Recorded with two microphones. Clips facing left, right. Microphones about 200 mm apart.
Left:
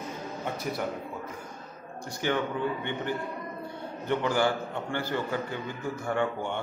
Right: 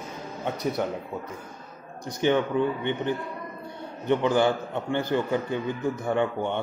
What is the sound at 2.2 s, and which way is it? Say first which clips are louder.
Speech: right 6 dB; 20° right (ahead or behind).